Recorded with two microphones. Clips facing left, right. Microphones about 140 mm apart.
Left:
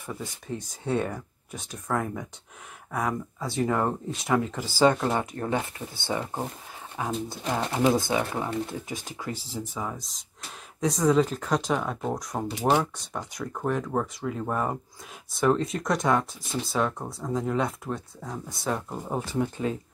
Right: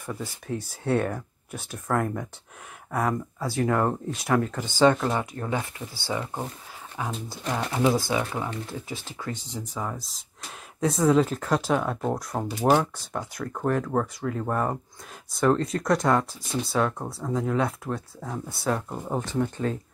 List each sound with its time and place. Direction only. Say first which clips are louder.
0.0 s speech: right 2 dB; centre (ahead or behind)
5.0 s speech: even; 25° left (ahead or behind)